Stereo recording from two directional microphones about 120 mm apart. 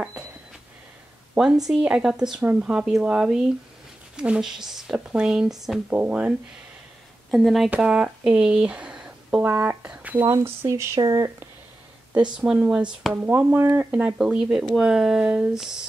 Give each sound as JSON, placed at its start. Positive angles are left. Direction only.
{"t": 1.3, "sound": "speech", "side_deg": -5}
{"t": 5.9, "sound": "speech", "side_deg": -15}
{"t": 7.2, "sound": "speech", "side_deg": 0}
{"t": 12.2, "sound": "speech", "side_deg": -10}